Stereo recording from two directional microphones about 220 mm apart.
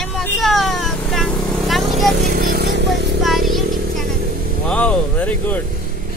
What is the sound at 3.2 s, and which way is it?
Vehicle, centre (ahead or behind).